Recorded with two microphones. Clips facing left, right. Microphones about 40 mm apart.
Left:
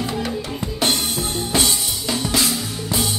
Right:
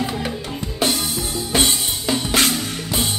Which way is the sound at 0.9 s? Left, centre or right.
Left.